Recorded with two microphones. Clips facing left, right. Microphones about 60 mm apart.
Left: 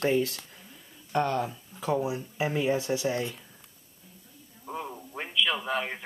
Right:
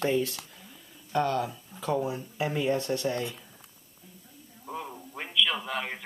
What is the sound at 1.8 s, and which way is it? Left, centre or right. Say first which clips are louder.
Speech: left 1 dB; centre.